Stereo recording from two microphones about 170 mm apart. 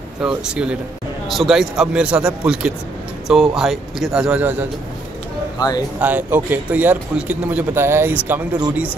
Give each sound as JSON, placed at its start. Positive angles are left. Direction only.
{"t": 0.2, "sound": "speech", "side_deg": -5}
{"t": 5.6, "sound": "speech", "side_deg": 20}
{"t": 5.9, "sound": "speech", "side_deg": -10}